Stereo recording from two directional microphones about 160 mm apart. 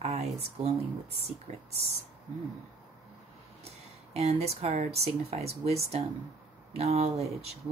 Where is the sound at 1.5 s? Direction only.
50° right (ahead or behind).